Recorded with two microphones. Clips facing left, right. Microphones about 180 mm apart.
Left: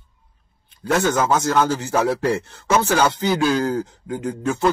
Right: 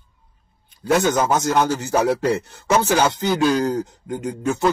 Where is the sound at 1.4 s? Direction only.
15° right (ahead or behind).